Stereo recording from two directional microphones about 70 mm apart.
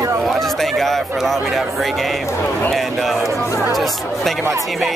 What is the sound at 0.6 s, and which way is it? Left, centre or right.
Speech, centre.